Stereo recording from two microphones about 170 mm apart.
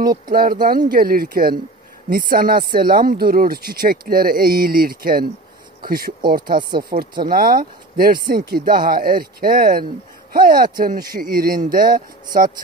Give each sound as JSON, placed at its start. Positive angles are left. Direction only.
{"t": 0.0, "sound": "speech", "side_deg": -60}